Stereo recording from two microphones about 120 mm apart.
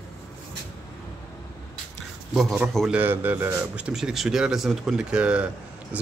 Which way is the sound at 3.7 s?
10° right (ahead or behind).